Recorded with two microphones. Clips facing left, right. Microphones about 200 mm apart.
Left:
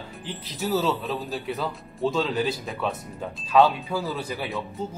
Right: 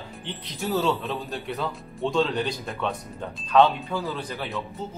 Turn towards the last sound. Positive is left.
turn(degrees=10)  # may be behind; listen again after turning